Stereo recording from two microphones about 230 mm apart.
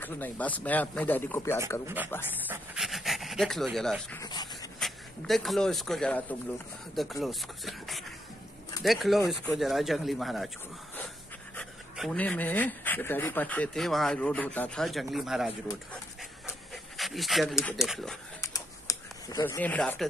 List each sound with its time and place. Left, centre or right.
0.0 s speech: centre
2.4 s speech: centre
4.2 s a sound: centre
4.7 s speech: centre
11.5 s speech: centre
16.4 s pant: centre
17.6 s speech: centre
17.8 s speech: centre
18.4 s typing: centre